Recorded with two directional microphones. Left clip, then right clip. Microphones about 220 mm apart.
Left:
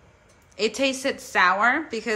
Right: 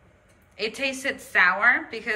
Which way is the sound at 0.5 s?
15° left (ahead or behind).